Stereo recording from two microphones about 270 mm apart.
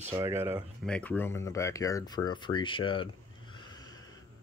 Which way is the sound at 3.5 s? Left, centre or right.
Centre.